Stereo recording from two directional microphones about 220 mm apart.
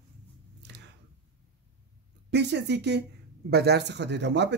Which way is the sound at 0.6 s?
50° right (ahead or behind).